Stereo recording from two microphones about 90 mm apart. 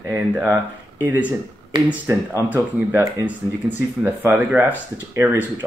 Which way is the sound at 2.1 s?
30° right (ahead or behind).